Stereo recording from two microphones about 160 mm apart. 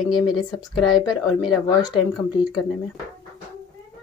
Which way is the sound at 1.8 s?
25° left (ahead or behind).